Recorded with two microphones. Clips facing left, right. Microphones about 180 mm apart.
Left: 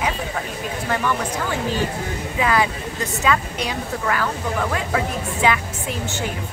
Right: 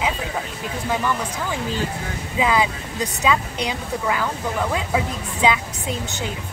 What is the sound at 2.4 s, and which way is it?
Speech, 15° right (ahead or behind).